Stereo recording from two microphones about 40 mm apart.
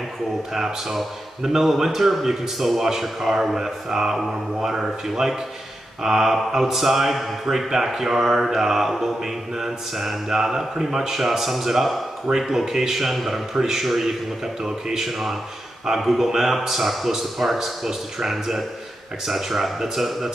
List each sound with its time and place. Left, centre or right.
0.5 s a man's voice: centre